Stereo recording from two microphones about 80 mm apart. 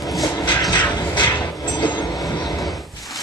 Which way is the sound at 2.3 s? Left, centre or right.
Left.